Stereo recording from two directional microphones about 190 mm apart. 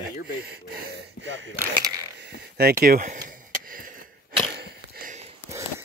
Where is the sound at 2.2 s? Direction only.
55° right (ahead or behind).